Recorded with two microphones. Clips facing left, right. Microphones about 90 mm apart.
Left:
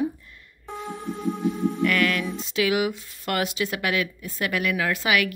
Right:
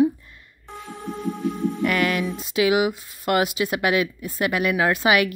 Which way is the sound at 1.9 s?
15° right (ahead or behind).